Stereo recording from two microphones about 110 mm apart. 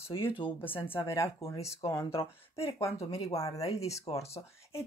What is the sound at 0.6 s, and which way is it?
Speech, 15° left (ahead or behind).